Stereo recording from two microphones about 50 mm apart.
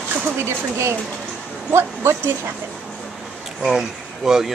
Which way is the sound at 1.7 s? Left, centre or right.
Right.